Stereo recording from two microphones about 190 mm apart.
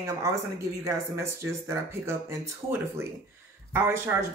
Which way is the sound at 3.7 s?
10° right (ahead or behind).